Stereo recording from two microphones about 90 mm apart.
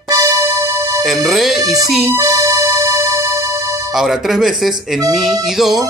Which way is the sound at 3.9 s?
Centre (ahead or behind).